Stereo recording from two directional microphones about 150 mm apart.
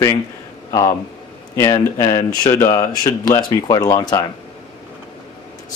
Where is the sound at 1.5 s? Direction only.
20° left (ahead or behind).